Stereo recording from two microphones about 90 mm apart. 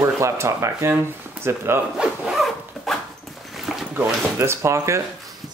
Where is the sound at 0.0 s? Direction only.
30° right (ahead or behind).